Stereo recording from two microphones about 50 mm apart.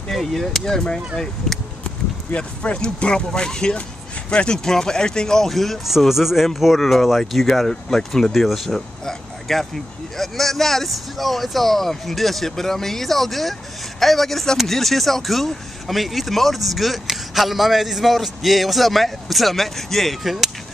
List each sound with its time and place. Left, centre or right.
0.1 s speech: centre
2.3 s speech: left; by 20.5 s centre